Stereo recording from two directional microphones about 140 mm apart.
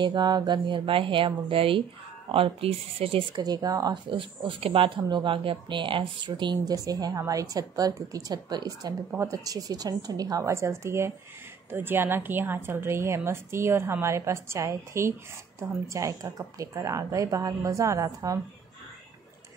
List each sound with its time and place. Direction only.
0.0 s a woman's voice: 30° right (ahead or behind)